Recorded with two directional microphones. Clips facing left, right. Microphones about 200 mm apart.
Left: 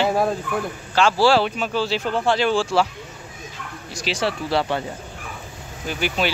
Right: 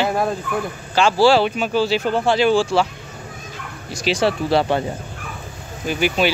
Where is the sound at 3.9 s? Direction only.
15° right (ahead or behind).